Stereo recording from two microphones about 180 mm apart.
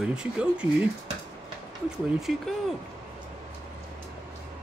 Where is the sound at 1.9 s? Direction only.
5° right (ahead or behind).